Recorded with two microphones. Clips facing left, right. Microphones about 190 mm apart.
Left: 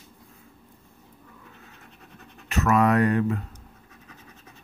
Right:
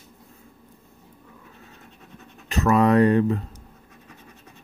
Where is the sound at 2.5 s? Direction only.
30° right (ahead or behind).